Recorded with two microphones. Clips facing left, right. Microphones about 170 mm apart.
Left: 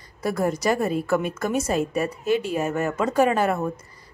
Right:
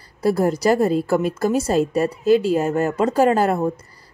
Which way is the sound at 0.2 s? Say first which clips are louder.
Right 5 dB; 30° right (ahead or behind).